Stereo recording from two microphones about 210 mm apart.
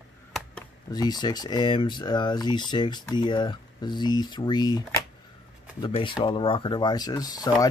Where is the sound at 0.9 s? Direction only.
20° left (ahead or behind).